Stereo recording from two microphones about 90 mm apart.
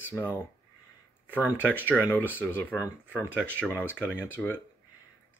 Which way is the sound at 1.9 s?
20° left (ahead or behind).